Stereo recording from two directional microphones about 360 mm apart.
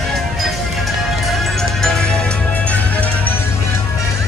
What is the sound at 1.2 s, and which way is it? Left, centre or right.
Music, centre.